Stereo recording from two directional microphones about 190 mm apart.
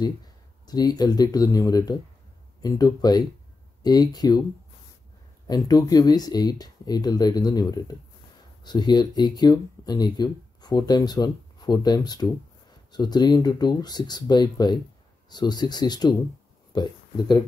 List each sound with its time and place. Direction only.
0.0 s speech: 20° left (ahead or behind)
5.5 s speech: 20° left (ahead or behind)